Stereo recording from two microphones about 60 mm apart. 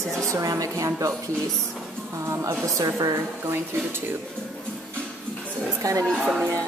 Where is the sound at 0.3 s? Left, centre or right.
Right.